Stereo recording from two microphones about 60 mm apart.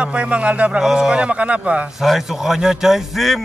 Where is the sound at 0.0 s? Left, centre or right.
Centre.